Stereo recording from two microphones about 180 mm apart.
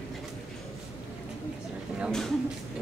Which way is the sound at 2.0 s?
Centre (ahead or behind).